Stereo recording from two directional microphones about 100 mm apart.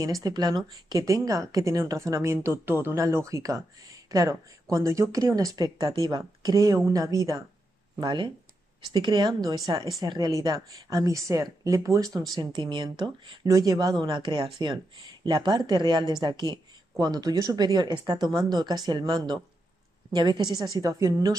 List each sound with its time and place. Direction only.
0.0 s a woman's voice: 35° right (ahead or behind)
8.0 s a woman's voice: 50° right (ahead or behind); by 12.2 s 35° right (ahead or behind)
12.4 s speech: 50° right (ahead or behind)
14.0 s a woman's voice: 55° right (ahead or behind); by 21.4 s 35° right (ahead or behind)